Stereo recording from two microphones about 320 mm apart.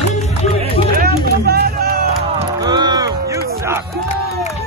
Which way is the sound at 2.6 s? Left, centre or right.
Centre.